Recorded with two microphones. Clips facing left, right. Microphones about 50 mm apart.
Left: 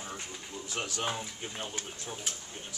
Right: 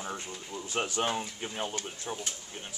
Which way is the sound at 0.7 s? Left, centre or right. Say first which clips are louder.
Right 4 dB; right.